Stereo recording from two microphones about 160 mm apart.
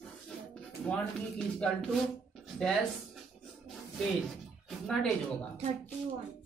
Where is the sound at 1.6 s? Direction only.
5° left (ahead or behind).